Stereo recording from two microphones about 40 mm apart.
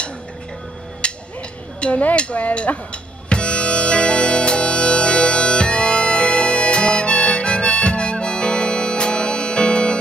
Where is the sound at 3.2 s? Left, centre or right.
Left.